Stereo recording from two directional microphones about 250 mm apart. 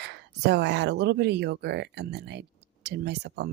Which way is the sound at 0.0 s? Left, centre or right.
Right.